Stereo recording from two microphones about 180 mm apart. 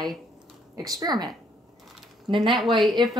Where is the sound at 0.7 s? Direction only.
20° right (ahead or behind).